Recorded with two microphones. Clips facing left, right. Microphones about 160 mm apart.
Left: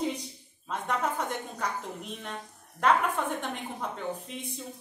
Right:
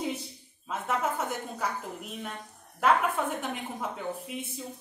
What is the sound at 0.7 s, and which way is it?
A woman's voice, 5° right (ahead or behind).